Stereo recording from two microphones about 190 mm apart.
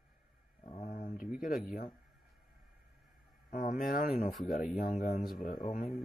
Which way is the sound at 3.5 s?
45° left (ahead or behind).